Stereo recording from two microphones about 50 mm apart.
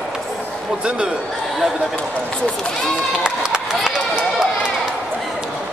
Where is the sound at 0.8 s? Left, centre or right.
Centre.